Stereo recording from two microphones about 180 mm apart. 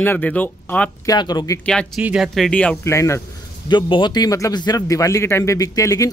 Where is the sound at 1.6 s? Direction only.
5° left (ahead or behind).